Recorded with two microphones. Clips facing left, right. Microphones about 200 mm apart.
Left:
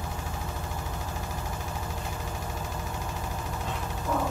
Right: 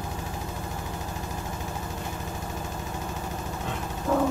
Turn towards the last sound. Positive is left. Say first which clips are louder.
# right 5 dB
turn(degrees=-60)  # may be behind; listen again after turning